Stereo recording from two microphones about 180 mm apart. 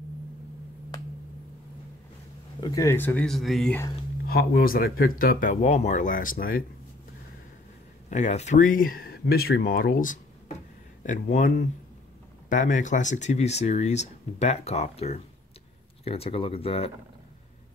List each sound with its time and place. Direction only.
2.6 s speech: 20° left (ahead or behind); by 3.7 s centre (ahead or behind)
4.3 s speech: 60° left (ahead or behind)
8.1 s speech: 40° left (ahead or behind)